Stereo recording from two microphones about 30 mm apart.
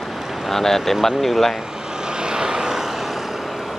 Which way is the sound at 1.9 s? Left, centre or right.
Right.